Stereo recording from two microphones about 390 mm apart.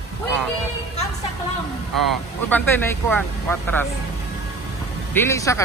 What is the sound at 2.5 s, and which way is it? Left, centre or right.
Speech, centre.